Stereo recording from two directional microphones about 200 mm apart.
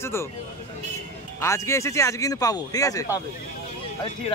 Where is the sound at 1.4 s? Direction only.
15° left (ahead or behind).